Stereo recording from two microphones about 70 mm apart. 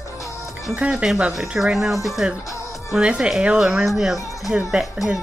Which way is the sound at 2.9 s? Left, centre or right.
Centre.